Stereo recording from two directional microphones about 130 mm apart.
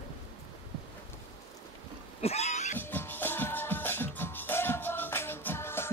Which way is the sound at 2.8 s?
15° left (ahead or behind).